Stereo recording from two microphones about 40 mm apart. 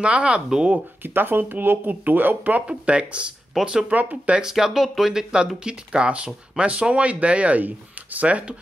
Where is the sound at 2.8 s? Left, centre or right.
Right.